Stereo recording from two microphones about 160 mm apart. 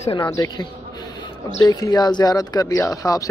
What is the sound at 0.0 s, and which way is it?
Speech, 35° left (ahead or behind).